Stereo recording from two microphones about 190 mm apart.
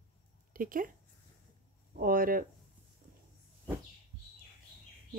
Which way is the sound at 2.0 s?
50° right (ahead or behind).